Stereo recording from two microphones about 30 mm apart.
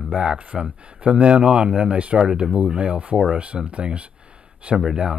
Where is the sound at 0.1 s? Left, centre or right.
Right.